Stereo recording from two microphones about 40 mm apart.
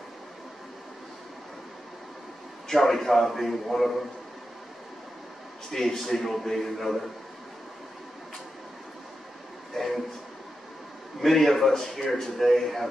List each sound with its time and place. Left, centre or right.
2.7 s a man's voice: centre
5.7 s a man's voice: centre
9.8 s a sound: centre
11.1 s a man's voice: centre